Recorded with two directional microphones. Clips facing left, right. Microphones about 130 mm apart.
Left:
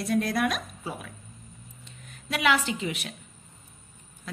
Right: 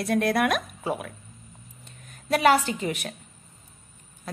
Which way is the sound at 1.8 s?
45° right (ahead or behind).